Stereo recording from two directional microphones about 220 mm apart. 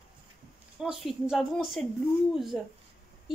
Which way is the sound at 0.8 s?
5° right (ahead or behind).